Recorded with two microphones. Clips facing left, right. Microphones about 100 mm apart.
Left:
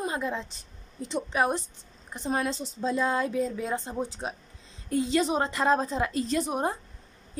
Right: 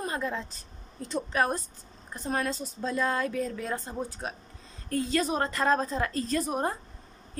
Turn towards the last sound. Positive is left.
turn(degrees=20)  # may be behind; listen again after turning